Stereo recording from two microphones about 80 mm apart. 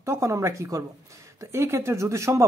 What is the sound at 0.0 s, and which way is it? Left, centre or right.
Speech, right.